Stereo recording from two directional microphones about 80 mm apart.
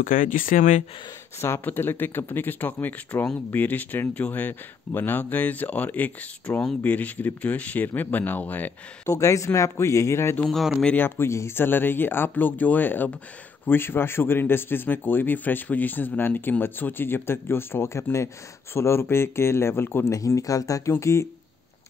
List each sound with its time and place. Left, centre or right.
1.4 s a man's voice: left
9.0 s speech: left
10.4 s speech: centre
11.0 s a man's voice: left
20.2 s speech: left